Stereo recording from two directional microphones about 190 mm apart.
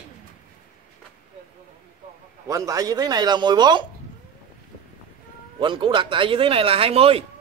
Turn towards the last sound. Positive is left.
turn(degrees=-30)  # may be behind; listen again after turning